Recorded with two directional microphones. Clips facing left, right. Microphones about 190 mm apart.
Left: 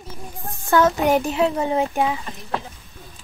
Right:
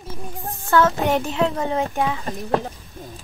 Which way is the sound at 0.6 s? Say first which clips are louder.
Left 1 dB; 15° left (ahead or behind).